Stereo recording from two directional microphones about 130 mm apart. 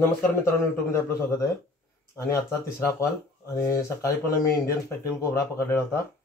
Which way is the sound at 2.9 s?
25° left (ahead or behind).